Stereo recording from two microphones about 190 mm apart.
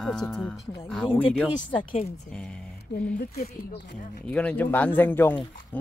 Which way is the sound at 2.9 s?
65° left (ahead or behind).